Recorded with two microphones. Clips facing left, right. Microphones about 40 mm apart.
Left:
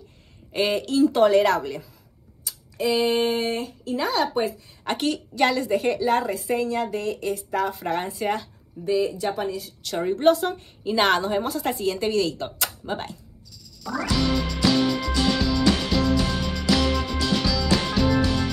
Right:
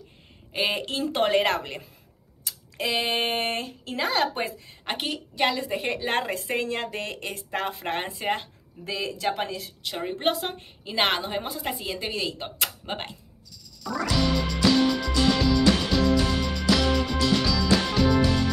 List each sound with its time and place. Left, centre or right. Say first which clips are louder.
0.5 s speech: left 3 dB; centre
0.7 s a woman's voice: left 7 dB; right
4.8 s speech: left 5 dB; centre
5.8 s a woman's voice: left 6 dB; right
6.1 s a woman's voice: left 3 dB; right
8.8 s a woman's voice: left 5 dB; right
9.8 s a woman's voice: left 7 dB; right
11.5 s speech: left 6 dB; centre; by 12.5 s right
12.5 s speech: left 2 dB; right
13.8 s music: left 1 dB; centre